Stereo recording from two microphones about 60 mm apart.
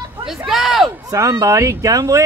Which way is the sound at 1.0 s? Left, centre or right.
Right.